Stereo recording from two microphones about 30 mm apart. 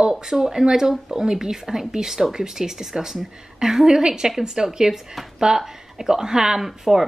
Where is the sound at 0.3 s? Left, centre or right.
Right.